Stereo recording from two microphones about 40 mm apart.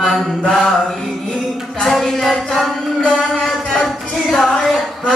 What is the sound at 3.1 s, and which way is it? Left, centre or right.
Music, centre.